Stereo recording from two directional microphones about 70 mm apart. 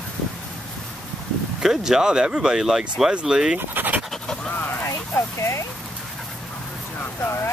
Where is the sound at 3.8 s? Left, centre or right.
Right.